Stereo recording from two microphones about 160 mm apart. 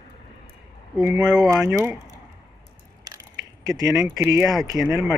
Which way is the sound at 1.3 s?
5° right (ahead or behind).